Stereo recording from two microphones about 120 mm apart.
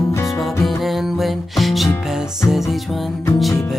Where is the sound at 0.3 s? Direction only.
Centre (ahead or behind).